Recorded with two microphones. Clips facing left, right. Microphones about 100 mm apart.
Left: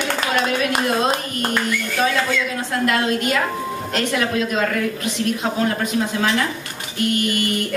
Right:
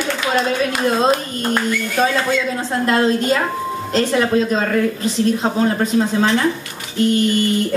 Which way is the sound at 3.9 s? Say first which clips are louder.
Right 6 dB; 30° right (ahead or behind).